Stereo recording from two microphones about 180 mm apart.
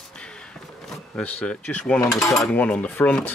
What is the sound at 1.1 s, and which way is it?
Speech, 5° left (ahead or behind).